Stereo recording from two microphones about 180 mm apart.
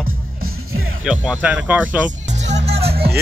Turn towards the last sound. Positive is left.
turn(degrees=-35)  # may be behind; listen again after turning